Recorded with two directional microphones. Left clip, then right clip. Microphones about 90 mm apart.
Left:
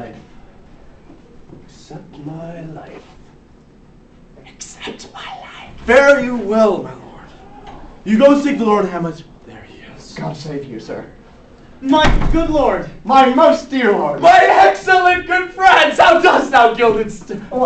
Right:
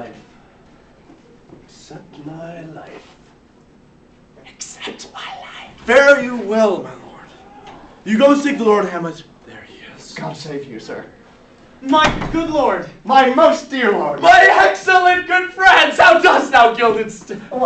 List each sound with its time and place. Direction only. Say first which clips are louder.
1.9 s speech: left 2 dB; 10° left (ahead or behind)
4.5 s a man's voice: even; 15° left (ahead or behind); by 7.2 s 5° right (ahead or behind)
8.0 s a sound: left 2 dB; 15° right (ahead or behind); by 10.2 s centre (ahead or behind)
10.2 s speech: left 1 dB; 15° right (ahead or behind)
11.8 s speech: even; 35° left (ahead or behind)
13.0 s a man's voice: left 1 dB; 30° right (ahead or behind)
14.1 s a sound: even; centre (ahead or behind)